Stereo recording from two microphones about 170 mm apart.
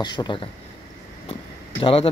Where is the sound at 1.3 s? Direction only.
30° left (ahead or behind).